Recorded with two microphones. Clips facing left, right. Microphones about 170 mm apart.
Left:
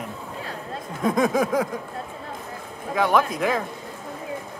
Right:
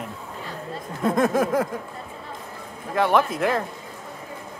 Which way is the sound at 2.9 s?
Centre (ahead or behind).